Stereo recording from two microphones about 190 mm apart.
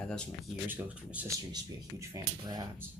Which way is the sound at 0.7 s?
10° right (ahead or behind).